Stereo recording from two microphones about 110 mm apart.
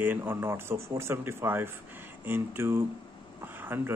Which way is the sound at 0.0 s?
20° right (ahead or behind).